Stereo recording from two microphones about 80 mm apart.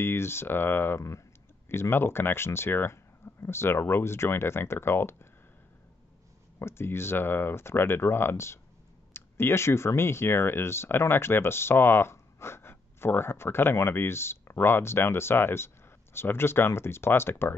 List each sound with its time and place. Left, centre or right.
0.0 s speech: left
6.6 s speech: left